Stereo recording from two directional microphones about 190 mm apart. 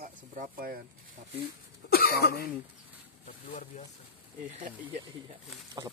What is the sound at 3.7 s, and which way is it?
Speech, 35° left (ahead or behind).